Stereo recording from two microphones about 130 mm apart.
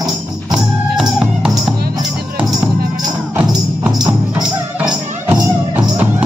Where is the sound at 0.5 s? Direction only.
5° right (ahead or behind).